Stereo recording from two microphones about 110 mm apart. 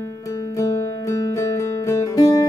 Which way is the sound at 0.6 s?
30° left (ahead or behind).